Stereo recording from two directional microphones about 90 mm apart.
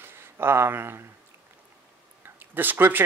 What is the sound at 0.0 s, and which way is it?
Speech, 25° right (ahead or behind).